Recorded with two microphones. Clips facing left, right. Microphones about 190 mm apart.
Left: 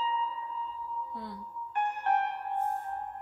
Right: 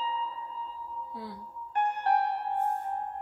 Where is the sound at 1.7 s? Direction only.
35° right (ahead or behind).